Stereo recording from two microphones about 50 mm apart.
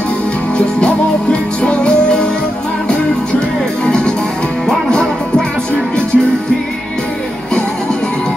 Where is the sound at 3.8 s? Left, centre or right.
Centre.